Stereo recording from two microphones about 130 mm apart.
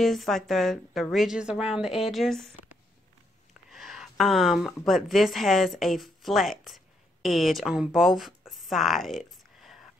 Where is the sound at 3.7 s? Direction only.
5° right (ahead or behind).